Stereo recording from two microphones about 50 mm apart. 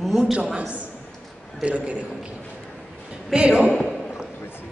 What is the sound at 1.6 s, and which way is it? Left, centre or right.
Speech, right.